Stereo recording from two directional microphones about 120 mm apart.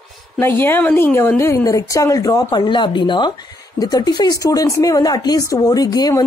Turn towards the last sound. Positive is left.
turn(degrees=30)  # may be behind; listen again after turning